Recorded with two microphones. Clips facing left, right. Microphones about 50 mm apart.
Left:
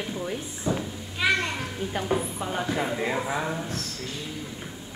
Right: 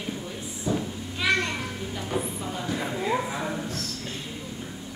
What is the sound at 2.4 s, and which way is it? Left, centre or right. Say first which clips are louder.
Speech: left 4 dB; left.